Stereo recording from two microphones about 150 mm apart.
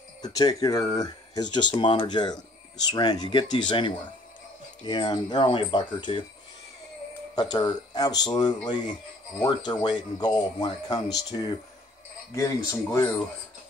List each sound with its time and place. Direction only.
0.2 s speech: 25° left (ahead or behind)
4.8 s speech: 30° left (ahead or behind)
7.3 s speech: 30° left (ahead or behind)